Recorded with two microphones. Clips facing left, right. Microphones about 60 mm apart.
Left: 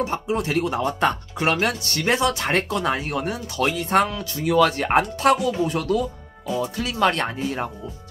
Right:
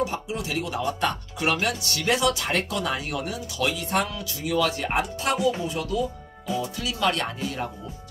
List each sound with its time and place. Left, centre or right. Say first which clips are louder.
0.0 s speech: left 4 dB; left